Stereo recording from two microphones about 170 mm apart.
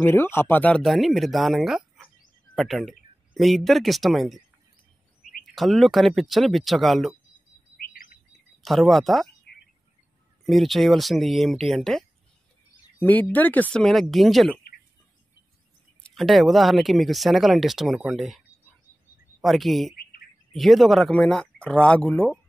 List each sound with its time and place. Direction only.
0.0 s speech: 15° left (ahead or behind)
5.4 s speech: centre (ahead or behind)
7.9 s chirp: 55° left (ahead or behind)
8.6 s speech: centre (ahead or behind)
10.4 s speech: centre (ahead or behind)
16.0 s speech: centre (ahead or behind)
19.4 s speech: centre (ahead or behind)
20.0 s bird: 60° left (ahead or behind)
20.5 s speech: centre (ahead or behind)